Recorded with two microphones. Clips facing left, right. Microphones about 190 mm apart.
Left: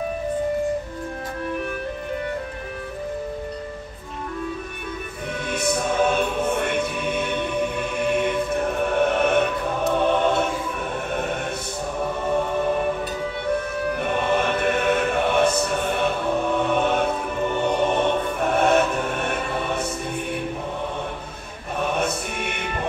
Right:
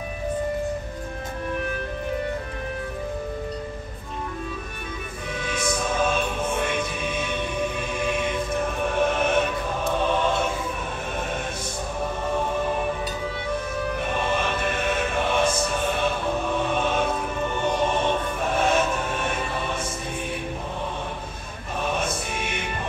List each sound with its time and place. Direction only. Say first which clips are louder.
5.4 s music: left 3 dB; 60° left (ahead or behind)
9.9 s choir: left 3 dB; 60° left (ahead or behind)
13.9 s music: left 4 dB; 55° left (ahead or behind)
21.7 s music: left 3 dB; 60° left (ahead or behind)